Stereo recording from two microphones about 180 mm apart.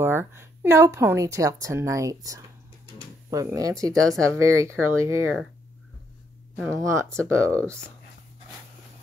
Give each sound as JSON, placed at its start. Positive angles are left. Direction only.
{"t": 0.0, "sound": "a woman's voice", "side_deg": -10}
{"t": 6.7, "sound": "a woman's voice", "side_deg": -15}